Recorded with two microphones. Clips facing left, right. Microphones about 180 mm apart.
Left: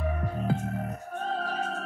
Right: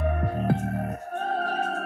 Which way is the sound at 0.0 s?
55° right (ahead or behind).